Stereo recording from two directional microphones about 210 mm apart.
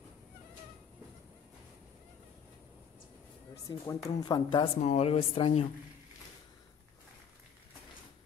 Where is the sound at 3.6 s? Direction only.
15° left (ahead or behind).